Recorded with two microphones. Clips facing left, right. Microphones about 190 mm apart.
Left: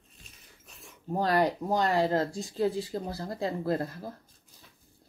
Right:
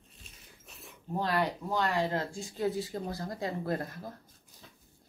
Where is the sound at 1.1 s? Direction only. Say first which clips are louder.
Left 5 dB; 40° left (ahead or behind).